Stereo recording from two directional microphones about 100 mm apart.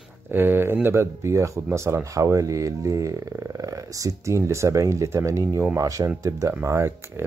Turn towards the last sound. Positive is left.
turn(degrees=-25)  # may be behind; listen again after turning